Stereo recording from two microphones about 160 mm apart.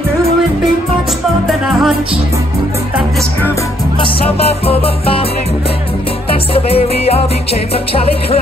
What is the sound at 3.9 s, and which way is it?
Music, 35° left (ahead or behind).